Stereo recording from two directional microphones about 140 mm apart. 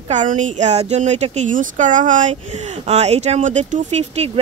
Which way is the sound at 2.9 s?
50° right (ahead or behind).